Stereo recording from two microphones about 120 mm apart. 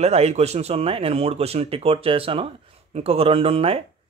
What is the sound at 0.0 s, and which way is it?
Speech, 60° right (ahead or behind).